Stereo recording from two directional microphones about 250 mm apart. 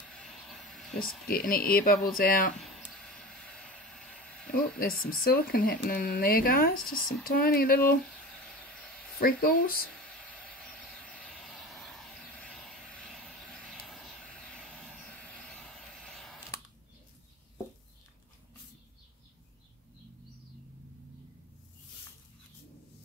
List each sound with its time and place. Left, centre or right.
0.0 s a sound: centre
1.3 s speech: left
2.6 s a sound: centre
4.5 s speech: left
6.8 s speech: centre
7.2 s speech: left
8.1 s a sound: centre
9.2 s speech: left
10.0 s vehicle: centre